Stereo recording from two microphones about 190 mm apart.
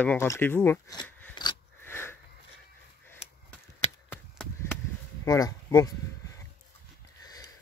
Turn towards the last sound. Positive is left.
turn(degrees=20)  # may be behind; listen again after turning